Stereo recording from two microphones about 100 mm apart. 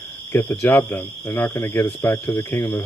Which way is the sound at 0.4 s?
25° left (ahead or behind).